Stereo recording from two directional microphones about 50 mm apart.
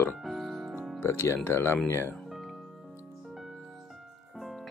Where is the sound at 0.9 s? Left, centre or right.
Left.